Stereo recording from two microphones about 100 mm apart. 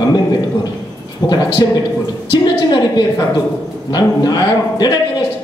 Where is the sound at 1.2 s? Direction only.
35° left (ahead or behind).